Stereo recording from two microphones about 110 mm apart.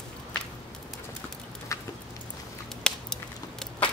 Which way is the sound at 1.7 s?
30° left (ahead or behind).